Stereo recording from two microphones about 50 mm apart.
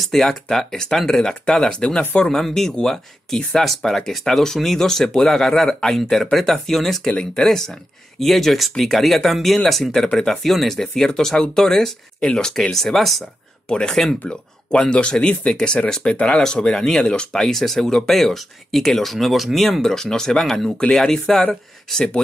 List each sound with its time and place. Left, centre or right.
0.0 s speech: centre
7.1 s speech: centre
13.7 s speech: centre